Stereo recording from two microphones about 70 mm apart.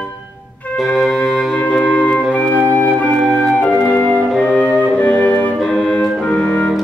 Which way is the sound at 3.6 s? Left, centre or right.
Left.